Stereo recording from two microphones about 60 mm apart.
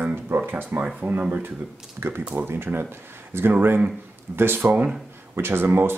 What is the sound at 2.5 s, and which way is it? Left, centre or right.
Speech, right.